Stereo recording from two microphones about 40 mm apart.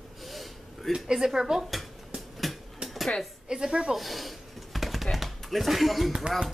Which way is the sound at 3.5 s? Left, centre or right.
Centre.